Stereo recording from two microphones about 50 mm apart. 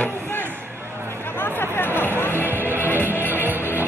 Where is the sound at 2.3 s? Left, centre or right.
Right.